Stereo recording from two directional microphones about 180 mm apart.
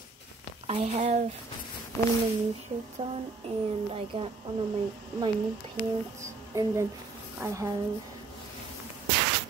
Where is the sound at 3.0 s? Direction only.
25° right (ahead or behind).